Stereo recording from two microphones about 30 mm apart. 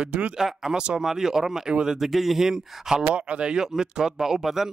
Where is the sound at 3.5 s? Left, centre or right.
Centre.